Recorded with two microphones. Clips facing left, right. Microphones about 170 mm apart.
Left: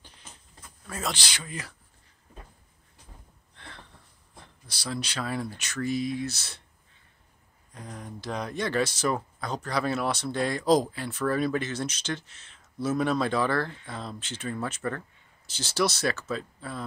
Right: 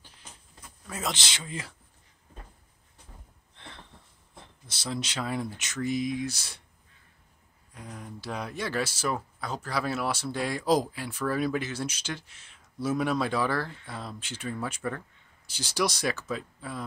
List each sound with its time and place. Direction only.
0.8 s speech: 20° right (ahead or behind)
3.5 s a sound: 20° right (ahead or behind)
4.4 s speech: 20° right (ahead or behind)
7.7 s speech: 5° right (ahead or behind)